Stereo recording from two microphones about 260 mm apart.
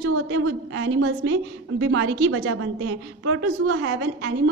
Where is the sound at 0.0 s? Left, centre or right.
Right.